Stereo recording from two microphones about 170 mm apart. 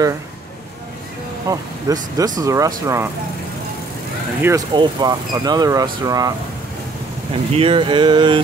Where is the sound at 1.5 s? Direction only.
20° right (ahead or behind).